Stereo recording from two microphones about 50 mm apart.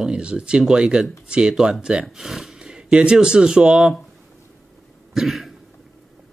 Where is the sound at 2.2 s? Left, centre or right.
Centre.